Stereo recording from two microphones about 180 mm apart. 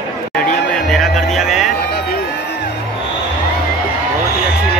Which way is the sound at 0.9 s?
Centre (ahead or behind).